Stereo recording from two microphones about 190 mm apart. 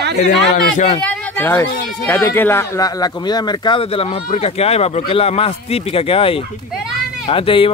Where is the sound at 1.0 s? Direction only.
10° left (ahead or behind); by 6.4 s 30° left (ahead or behind).